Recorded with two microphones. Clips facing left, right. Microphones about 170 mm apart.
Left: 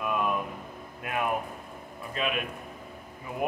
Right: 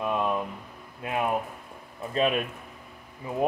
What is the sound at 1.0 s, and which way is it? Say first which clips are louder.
A man's voice: right 2 dB; 25° right (ahead or behind).